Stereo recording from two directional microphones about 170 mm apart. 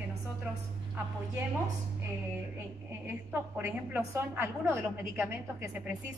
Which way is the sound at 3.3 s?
10° right (ahead or behind).